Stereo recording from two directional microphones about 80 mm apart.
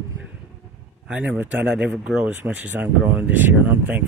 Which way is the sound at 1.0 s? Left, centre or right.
Centre.